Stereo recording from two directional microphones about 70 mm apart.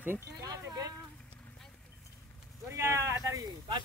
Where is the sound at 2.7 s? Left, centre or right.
Right.